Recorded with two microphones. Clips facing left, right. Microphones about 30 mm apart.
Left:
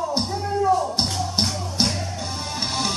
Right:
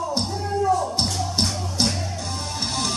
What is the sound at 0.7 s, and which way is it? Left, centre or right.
Music, centre.